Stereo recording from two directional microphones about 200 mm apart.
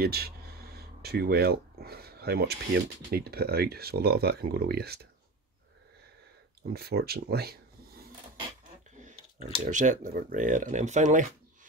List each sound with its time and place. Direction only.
0.0 s a sound: 50° right (ahead or behind)
3.1 s speech: 50° right (ahead or behind)
6.7 s speech: 50° right (ahead or behind)
9.0 s speech: 40° right (ahead or behind)